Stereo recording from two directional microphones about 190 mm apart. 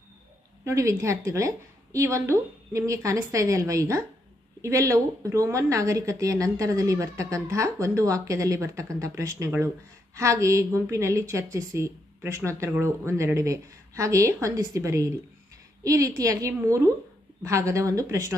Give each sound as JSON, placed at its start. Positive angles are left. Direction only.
{"t": 0.7, "sound": "a woman's voice", "side_deg": -15}